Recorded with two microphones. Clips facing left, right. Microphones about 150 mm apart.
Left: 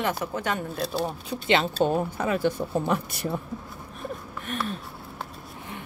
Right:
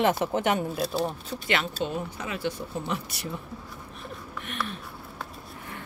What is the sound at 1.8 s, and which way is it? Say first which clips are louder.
Speech: left 7 dB; 50° left (ahead or behind).